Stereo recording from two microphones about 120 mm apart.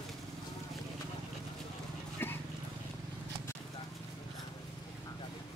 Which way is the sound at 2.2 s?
20° left (ahead or behind).